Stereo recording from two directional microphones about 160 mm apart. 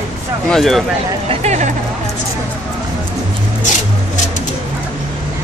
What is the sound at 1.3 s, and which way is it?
Speech, 45° right (ahead or behind).